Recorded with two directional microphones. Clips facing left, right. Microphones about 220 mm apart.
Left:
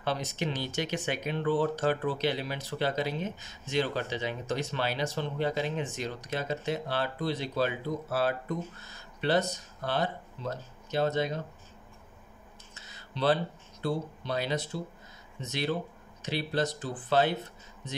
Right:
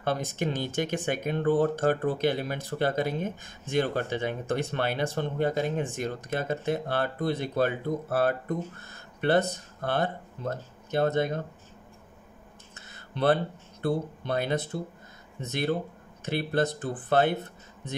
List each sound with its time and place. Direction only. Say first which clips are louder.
0.0 s speech: right 3 dB; 50° right (ahead or behind)
12.7 s a sound: right 3 dB; 55° right (ahead or behind)
13.8 s speech: right 3 dB; 55° right (ahead or behind)